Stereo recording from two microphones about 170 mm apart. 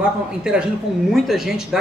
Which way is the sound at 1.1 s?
Centre (ahead or behind).